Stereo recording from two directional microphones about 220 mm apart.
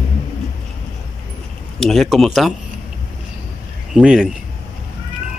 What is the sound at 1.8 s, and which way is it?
Speech, centre (ahead or behind).